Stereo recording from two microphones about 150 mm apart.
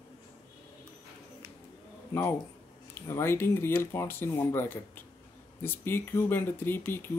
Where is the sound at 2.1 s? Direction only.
15° left (ahead or behind).